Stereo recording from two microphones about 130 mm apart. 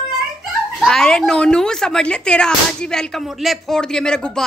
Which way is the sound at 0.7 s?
5° left (ahead or behind).